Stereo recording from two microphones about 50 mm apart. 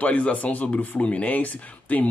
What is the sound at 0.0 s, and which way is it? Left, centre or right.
Speech, left.